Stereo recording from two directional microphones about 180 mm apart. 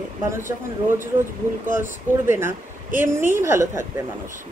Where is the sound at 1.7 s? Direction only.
15° right (ahead or behind).